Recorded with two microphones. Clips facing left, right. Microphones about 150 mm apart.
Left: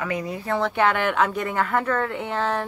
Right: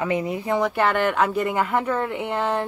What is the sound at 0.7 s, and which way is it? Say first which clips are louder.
Speech: right 1 dB; centre (ahead or behind).